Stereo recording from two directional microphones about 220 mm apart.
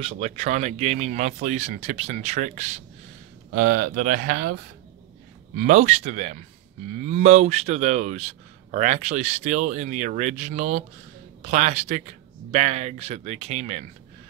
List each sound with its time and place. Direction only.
0.0 s speech: 30° right (ahead or behind)
3.5 s speech: 45° right (ahead or behind)
5.6 s speech: 35° right (ahead or behind)